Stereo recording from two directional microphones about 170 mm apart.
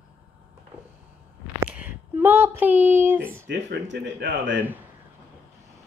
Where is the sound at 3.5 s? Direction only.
90° right.